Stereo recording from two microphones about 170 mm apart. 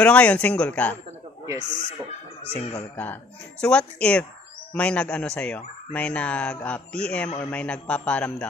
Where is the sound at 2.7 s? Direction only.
10° left (ahead or behind).